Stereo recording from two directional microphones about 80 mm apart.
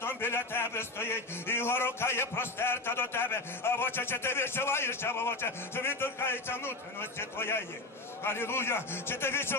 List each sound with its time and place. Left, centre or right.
0.0 s a man's voice: left